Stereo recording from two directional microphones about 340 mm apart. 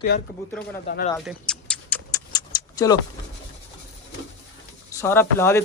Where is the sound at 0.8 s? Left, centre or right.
Left.